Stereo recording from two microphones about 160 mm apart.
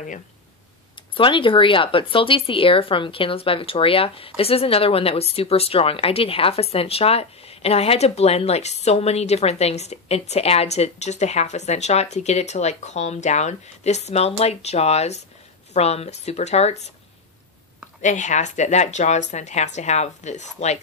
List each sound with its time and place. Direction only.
1.1 s a woman's voice: 30° left (ahead or behind)
18.0 s a woman's voice: 50° left (ahead or behind)